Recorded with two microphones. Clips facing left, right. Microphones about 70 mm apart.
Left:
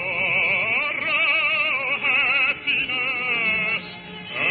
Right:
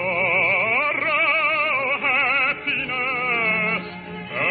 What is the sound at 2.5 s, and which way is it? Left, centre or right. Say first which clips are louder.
Music: right 1 dB; right.